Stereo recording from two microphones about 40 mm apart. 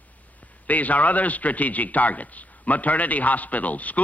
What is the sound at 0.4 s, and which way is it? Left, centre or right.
A man's voice, left.